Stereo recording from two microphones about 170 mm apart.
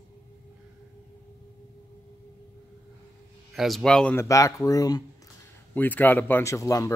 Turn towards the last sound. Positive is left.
turn(degrees=20)  # may be behind; listen again after turning